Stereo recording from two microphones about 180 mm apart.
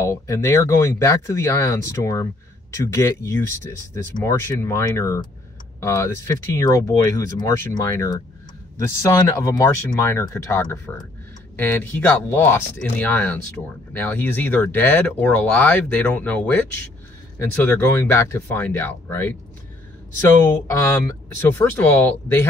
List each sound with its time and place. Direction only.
0.0 s speech: 15° left (ahead or behind)
20.7 s speech: 20° left (ahead or behind)